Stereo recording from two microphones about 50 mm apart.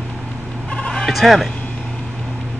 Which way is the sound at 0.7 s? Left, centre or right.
Left.